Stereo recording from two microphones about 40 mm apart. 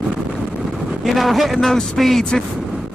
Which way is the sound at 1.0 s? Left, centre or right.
Centre.